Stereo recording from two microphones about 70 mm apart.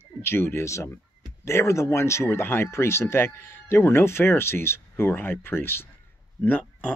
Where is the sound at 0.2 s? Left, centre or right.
Left.